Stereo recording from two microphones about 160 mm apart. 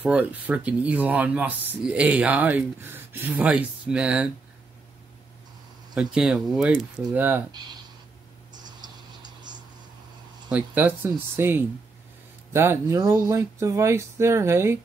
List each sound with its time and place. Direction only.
0.0 s speech: 10° right (ahead or behind)
5.9 s speech: 5° right (ahead or behind)
8.5 s a sound: 25° right (ahead or behind)
10.5 s speech: 10° right (ahead or behind)